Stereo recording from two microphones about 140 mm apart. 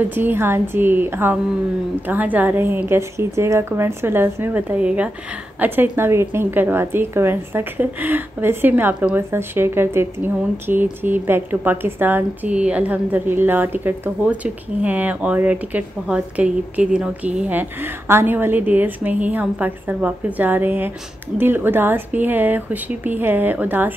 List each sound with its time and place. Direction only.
0.1 s a woman's voice: 15° right (ahead or behind)